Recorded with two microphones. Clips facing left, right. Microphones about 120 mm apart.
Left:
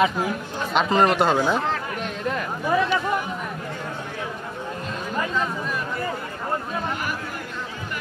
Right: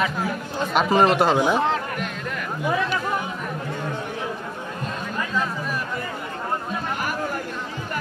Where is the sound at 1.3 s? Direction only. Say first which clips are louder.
Right 2 dB; 15° right (ahead or behind).